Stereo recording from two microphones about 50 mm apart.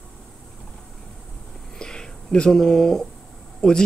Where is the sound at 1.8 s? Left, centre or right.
Centre.